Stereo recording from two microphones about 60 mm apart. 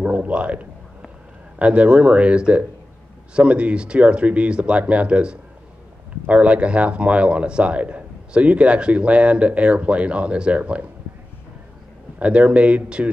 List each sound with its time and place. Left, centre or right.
0.0 s a man's voice: centre
12.2 s speech: right